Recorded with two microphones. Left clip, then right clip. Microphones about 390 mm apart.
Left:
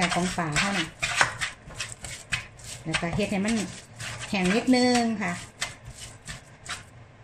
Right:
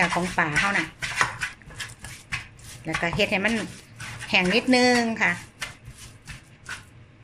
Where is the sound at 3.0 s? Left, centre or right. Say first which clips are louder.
Right 10 dB; right.